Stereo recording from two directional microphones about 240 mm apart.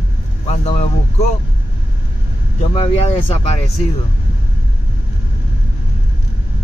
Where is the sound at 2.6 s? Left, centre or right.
Left.